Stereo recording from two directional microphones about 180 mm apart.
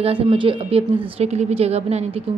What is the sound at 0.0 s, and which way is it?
A woman's voice, 30° right (ahead or behind).